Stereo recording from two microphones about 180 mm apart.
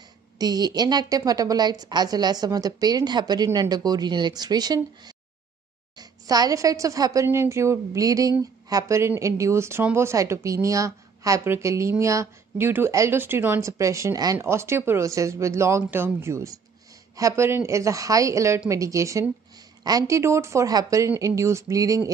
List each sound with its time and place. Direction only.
0.4 s a woman's voice: 20° right (ahead or behind)